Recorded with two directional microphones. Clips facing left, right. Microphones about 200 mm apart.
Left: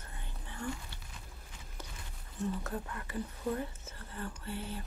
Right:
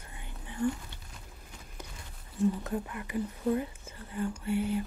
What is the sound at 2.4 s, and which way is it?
Speech, 15° right (ahead or behind).